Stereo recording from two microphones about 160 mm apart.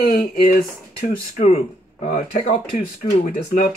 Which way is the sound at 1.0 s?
45° left (ahead or behind).